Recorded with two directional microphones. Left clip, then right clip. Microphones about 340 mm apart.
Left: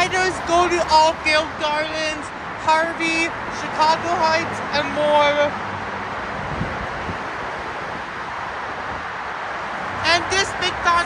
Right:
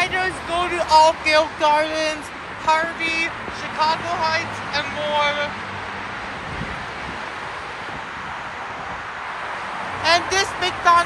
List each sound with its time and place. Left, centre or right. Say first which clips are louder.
0.0 s a sound: left 2 dB; centre
2.6 s speech: left 1 dB; centre
10.0 s speech: right 1 dB; centre